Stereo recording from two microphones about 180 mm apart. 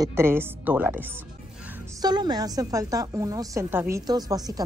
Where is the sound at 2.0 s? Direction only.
25° right (ahead or behind).